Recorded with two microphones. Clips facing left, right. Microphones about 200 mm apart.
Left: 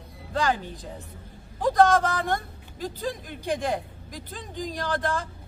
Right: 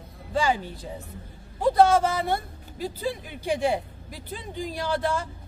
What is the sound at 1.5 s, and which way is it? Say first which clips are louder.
A man's voice: right 1 dB; 10° right (ahead or behind).